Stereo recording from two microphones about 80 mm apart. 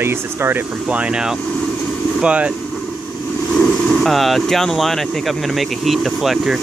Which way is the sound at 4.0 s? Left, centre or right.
Centre.